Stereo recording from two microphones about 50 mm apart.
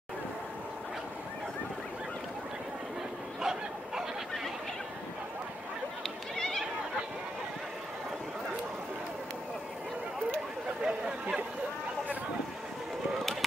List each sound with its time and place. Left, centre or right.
3.3 s bow-wow: centre
6.3 s a sound: centre
10.9 s chatter: right